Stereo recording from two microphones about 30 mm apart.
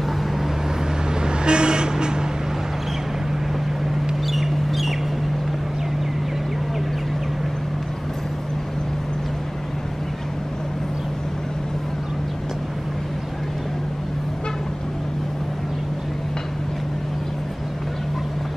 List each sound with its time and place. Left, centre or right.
1.2 s vehicle: right
4.3 s bird: centre